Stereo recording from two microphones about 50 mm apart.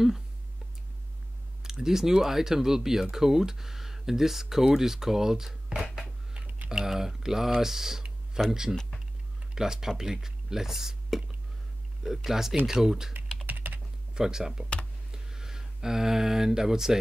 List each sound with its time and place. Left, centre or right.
1.6 s speech: centre
6.3 s typing: right
6.7 s speech: centre
13.5 s typing: right
14.1 s speech: centre
15.0 s a sound: centre